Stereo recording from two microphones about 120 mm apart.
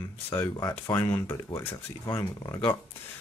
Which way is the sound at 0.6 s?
30° left (ahead or behind).